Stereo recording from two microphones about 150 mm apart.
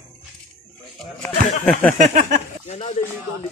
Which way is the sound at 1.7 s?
10° left (ahead or behind).